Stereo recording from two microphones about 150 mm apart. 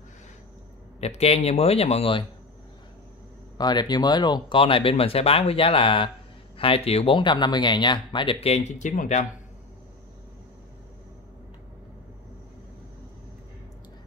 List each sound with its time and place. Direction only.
1.0 s speech: 45° left (ahead or behind)
3.5 s speech: 30° left (ahead or behind); by 9.3 s 60° left (ahead or behind)